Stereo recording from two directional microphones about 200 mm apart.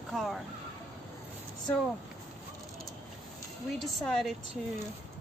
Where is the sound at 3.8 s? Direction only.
Centre (ahead or behind).